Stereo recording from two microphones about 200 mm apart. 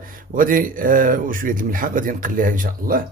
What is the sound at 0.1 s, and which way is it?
Speech, 45° right (ahead or behind).